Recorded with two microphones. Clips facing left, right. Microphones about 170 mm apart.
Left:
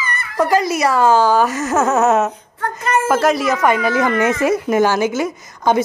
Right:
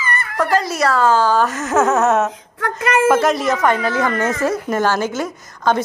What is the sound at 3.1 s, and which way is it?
A woman's voice, 5° left (ahead or behind).